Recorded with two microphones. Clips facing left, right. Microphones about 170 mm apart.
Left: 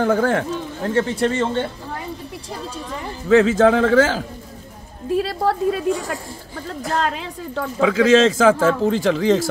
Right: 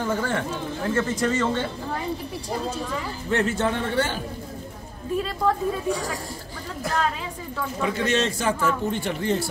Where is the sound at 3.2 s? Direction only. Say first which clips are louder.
Left 11 dB; 90° left.